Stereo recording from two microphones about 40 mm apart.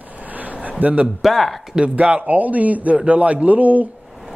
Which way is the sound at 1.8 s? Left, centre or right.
Right.